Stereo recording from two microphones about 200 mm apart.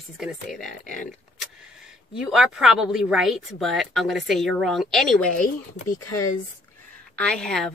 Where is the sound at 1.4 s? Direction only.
5° right (ahead or behind).